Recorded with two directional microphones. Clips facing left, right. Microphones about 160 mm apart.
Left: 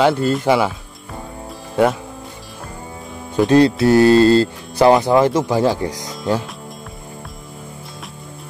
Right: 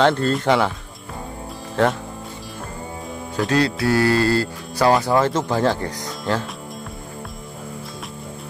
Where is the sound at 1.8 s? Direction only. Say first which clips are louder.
Left 3 dB; 10° left (ahead or behind).